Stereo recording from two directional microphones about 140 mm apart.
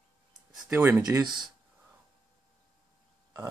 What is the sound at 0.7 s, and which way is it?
Speech, 15° right (ahead or behind).